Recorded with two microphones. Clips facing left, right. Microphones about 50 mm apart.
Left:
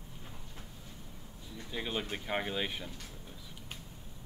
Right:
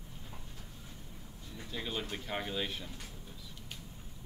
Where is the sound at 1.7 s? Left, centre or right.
Centre.